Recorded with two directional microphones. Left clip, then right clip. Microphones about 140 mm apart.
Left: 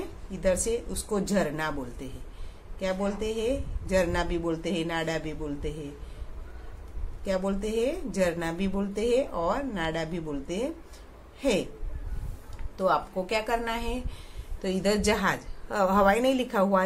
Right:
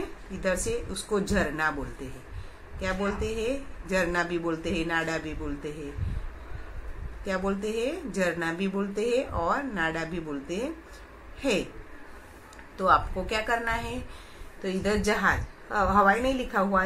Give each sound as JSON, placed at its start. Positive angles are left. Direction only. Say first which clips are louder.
{"t": 0.3, "sound": "speech", "louder": "left 2 dB", "side_deg": 25}
{"t": 2.8, "sound": "speech", "louder": "even", "side_deg": 20}
{"t": 7.2, "sound": "speech", "louder": "even", "side_deg": 20}
{"t": 12.7, "sound": "a woman's voice", "louder": "right 3 dB", "side_deg": 20}